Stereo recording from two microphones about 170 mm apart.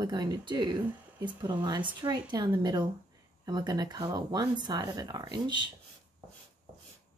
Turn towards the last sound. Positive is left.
turn(degrees=-25)  # may be behind; listen again after turning